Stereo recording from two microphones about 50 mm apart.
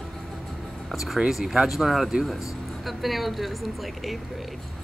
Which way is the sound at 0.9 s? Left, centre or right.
Centre.